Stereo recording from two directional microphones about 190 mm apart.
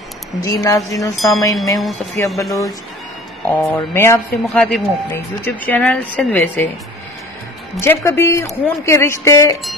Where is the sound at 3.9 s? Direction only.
15° left (ahead or behind).